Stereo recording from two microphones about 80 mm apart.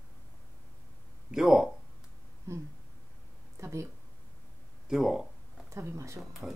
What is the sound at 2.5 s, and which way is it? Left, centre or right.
Speech, right.